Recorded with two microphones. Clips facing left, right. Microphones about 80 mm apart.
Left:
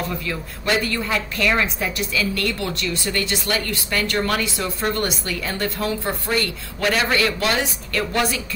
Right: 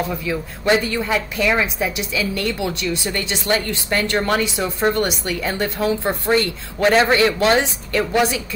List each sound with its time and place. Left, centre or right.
0.1 s a woman's voice: centre